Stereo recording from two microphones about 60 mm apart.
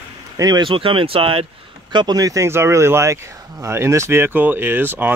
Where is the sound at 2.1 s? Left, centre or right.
Right.